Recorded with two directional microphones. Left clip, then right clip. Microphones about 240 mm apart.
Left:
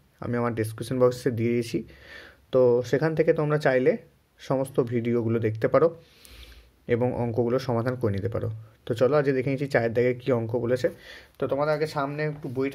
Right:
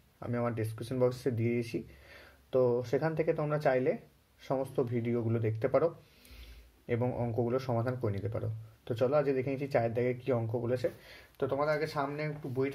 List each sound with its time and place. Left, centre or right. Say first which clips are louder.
0.2 s speech: left 7 dB; left